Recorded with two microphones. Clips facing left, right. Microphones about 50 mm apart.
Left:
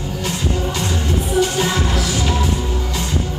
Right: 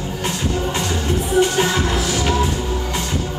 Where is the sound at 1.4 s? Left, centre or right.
Right.